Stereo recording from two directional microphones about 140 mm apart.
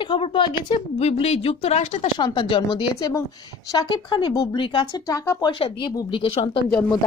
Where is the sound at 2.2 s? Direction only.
35° left (ahead or behind).